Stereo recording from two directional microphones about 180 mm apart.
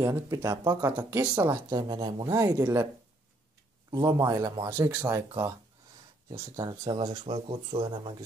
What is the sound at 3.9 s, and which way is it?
Speech, 20° right (ahead or behind).